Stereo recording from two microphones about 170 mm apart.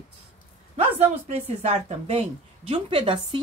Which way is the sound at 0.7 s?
40° right (ahead or behind).